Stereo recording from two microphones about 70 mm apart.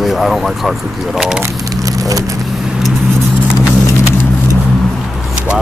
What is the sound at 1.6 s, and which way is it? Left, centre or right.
Vehicle, right.